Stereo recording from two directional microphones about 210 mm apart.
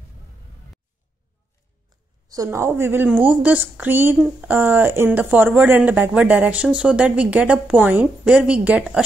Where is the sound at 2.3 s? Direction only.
15° right (ahead or behind).